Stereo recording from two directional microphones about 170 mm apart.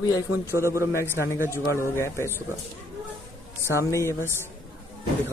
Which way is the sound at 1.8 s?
15° left (ahead or behind).